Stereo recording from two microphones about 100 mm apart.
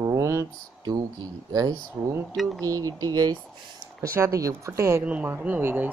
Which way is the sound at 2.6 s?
35° right (ahead or behind).